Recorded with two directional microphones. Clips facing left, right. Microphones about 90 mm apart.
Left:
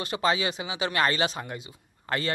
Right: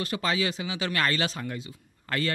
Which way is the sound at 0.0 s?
20° left (ahead or behind).